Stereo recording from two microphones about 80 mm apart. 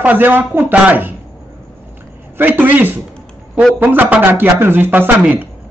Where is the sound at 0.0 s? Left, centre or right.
Right.